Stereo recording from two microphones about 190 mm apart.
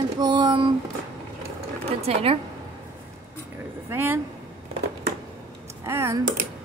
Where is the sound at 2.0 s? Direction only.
30° right (ahead or behind).